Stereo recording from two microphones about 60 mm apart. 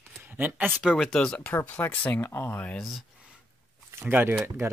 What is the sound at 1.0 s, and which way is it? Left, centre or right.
Speech, centre.